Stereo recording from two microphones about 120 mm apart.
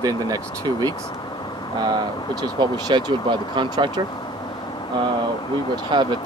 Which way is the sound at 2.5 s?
35° right (ahead or behind).